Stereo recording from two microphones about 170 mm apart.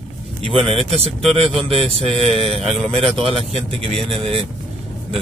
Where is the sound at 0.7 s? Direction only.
35° right (ahead or behind).